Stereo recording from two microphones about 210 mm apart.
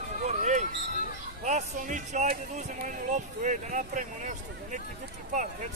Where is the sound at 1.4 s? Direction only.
35° right (ahead or behind).